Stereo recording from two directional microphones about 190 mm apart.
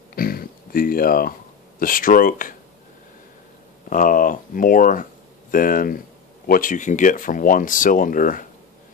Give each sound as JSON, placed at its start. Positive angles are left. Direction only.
{"t": 0.1, "sound": "a sound", "side_deg": 50}
{"t": 1.8, "sound": "speech", "side_deg": 45}
{"t": 3.9, "sound": "speech", "side_deg": 45}